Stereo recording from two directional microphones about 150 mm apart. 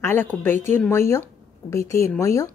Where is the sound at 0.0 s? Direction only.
15° left (ahead or behind).